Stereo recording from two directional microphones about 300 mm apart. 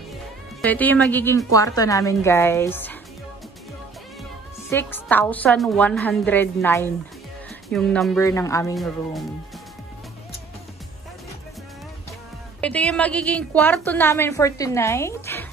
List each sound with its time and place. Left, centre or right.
0.6 s a woman's voice: centre
4.6 s a woman's voice: centre
12.5 s a woman's voice: centre